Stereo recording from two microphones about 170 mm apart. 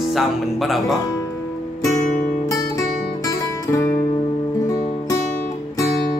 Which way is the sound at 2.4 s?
20° left (ahead or behind).